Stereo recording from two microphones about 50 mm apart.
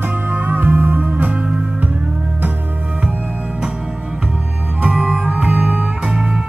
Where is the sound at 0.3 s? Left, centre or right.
Right.